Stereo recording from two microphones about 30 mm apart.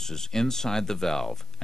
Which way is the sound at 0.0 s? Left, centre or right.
Centre.